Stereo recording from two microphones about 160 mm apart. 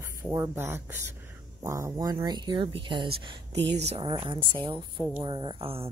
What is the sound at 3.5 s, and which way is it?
Speech, 90° right.